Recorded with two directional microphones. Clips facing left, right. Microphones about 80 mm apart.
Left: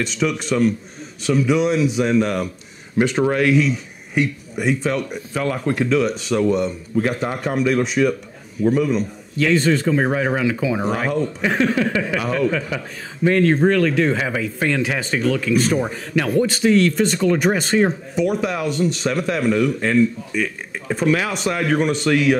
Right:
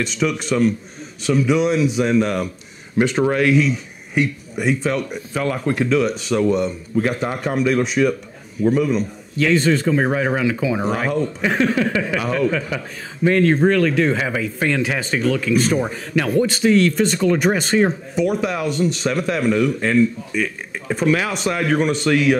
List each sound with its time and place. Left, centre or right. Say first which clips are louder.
0.0 s a man's voice: even; right